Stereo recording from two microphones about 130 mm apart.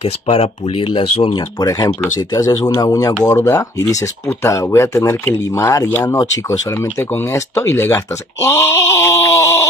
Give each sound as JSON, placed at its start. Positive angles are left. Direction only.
{"t": 0.0, "sound": "speech", "side_deg": 50}
{"t": 1.6, "sound": "speech", "side_deg": 30}